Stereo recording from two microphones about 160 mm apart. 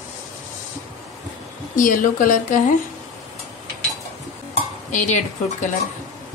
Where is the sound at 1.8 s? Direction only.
55° left (ahead or behind).